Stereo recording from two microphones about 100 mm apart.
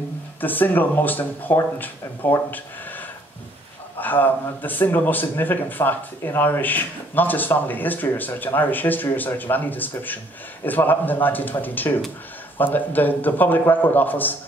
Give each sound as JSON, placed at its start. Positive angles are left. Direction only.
{"t": 0.4, "sound": "speech", "side_deg": 20}
{"t": 4.0, "sound": "speech", "side_deg": 20}